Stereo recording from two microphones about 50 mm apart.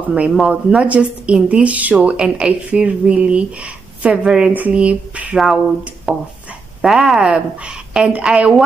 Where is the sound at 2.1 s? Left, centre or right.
Centre.